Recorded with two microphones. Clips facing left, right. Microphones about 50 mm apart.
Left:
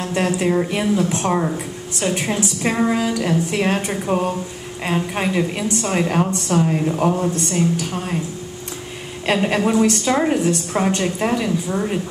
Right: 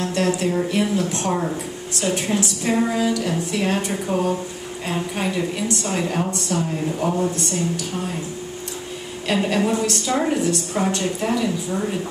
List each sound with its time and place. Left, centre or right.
0.0 s a woman's voice: left
9.7 s a woman's voice: left